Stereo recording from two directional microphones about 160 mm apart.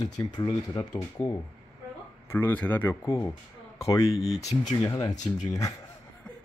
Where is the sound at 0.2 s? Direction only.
25° left (ahead or behind).